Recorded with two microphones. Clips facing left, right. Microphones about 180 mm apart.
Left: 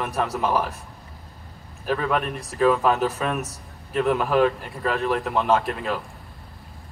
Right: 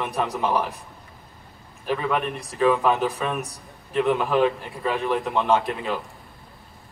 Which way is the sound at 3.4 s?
15° right (ahead or behind).